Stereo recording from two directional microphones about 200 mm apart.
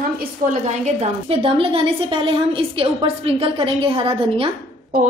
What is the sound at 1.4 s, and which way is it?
A woman's voice, 25° right (ahead or behind).